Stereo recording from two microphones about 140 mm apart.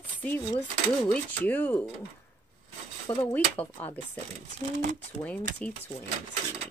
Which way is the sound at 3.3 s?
10° left (ahead or behind).